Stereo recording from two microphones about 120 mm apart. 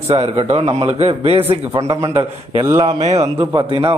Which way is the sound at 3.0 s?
65° right (ahead or behind).